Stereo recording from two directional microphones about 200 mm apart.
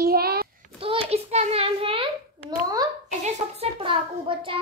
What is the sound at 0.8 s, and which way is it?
A child's voice, 25° right (ahead or behind).